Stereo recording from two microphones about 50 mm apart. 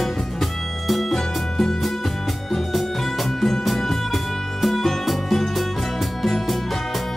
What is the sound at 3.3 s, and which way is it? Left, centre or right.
Music, centre.